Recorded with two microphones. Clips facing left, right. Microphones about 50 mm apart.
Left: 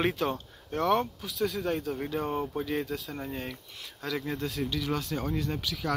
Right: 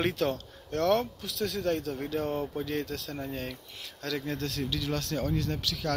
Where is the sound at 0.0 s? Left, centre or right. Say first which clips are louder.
Even; centre.